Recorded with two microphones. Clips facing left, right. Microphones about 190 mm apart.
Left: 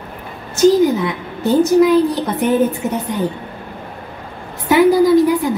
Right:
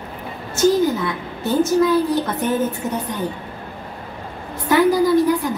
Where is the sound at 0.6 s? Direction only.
15° left (ahead or behind).